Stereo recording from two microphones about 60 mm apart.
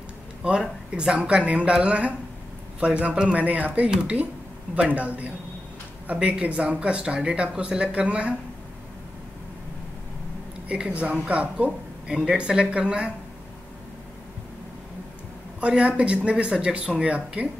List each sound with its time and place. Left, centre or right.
0.4 s speech: centre
10.7 s speech: right
15.6 s speech: centre